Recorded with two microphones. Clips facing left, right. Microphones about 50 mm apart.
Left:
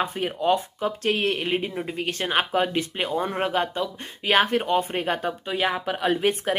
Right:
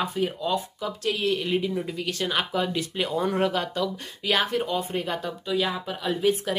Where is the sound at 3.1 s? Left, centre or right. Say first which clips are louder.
Right 2 dB; left.